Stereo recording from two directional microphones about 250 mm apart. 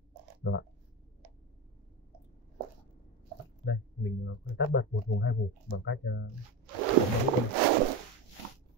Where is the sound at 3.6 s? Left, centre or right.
Left.